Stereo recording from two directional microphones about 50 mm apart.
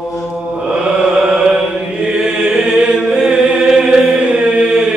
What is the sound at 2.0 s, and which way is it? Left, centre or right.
Chant, centre.